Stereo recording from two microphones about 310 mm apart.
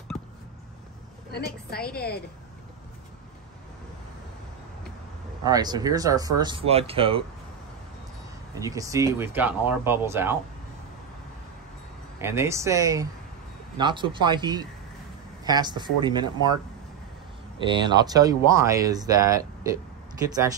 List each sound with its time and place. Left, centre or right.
1.3 s a woman's voice: left
5.4 s speech: centre
8.5 s speech: centre
12.2 s speech: centre
17.6 s speech: centre